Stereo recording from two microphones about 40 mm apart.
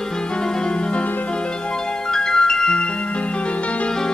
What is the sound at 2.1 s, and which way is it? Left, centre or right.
Glockenspiel, centre.